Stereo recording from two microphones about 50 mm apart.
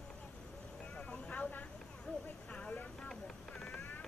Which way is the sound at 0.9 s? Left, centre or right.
Left.